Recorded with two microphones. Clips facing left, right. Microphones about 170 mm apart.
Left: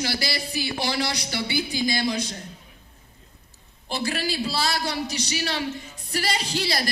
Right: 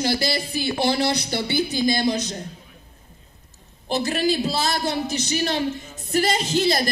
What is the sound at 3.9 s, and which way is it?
Speech, 45° right (ahead or behind).